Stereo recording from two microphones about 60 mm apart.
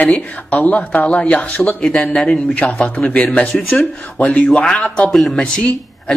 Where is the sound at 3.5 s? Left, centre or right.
Centre.